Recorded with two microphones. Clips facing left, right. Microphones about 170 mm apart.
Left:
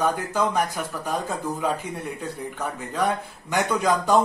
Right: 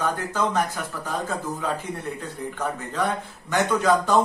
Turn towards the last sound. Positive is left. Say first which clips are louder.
# right 1 dB
turn(degrees=10)  # may be behind; listen again after turning